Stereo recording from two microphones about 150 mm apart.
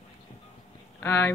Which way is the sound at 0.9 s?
15° left (ahead or behind).